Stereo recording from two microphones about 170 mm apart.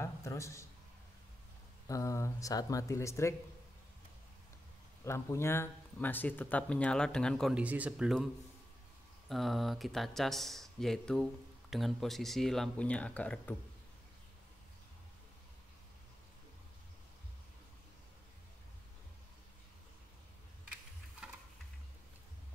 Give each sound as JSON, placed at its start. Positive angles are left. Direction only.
{"t": 0.0, "sound": "a man's voice", "side_deg": 15}
{"t": 1.9, "sound": "speech", "side_deg": 20}
{"t": 5.0, "sound": "speech", "side_deg": 15}
{"t": 9.3, "sound": "speech", "side_deg": 0}